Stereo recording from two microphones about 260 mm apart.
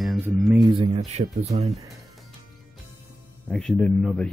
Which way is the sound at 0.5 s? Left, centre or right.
Centre.